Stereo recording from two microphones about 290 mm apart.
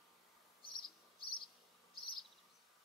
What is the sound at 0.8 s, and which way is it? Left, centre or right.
Cricket, left.